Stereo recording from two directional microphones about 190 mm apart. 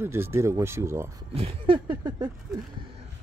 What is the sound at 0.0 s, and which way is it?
Speech, 15° right (ahead or behind).